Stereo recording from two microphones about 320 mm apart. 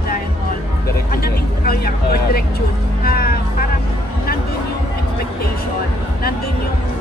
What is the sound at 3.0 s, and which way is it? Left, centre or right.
Music, left.